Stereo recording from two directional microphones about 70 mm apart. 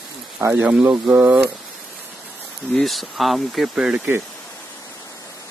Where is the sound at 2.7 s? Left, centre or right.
Centre.